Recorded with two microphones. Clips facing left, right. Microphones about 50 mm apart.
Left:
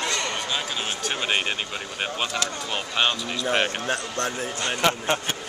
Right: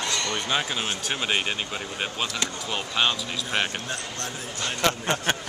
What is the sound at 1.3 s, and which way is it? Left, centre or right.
Speech, centre.